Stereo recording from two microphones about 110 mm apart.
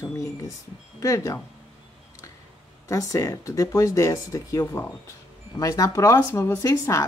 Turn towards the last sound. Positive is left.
turn(degrees=30)  # may be behind; listen again after turning